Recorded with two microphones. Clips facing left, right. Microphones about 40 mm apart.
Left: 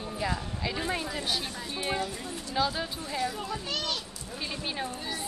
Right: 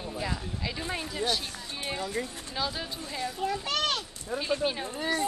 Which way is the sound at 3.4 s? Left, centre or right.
Right.